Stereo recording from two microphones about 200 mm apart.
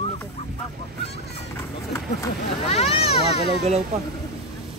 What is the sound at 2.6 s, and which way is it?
Speech, 30° left (ahead or behind).